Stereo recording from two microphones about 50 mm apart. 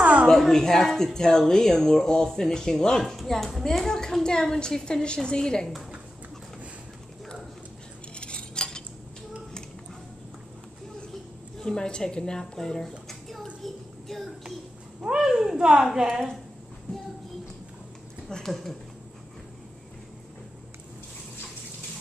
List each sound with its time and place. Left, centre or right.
0.0 s a sound: right
0.3 s speech: centre
8.1 s cutlery: centre
11.6 s speech: centre
13.6 s a sound: centre
15.0 s a woman's voice: centre
15.9 s a woman's voice: centre
18.3 s speech: centre